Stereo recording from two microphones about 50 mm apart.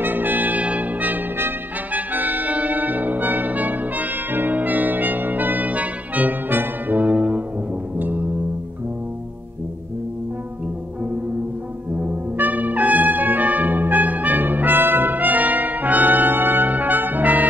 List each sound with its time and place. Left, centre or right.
0.0 s trumpet: right
1.9 s brass instrument: right
12.0 s brass instrument: right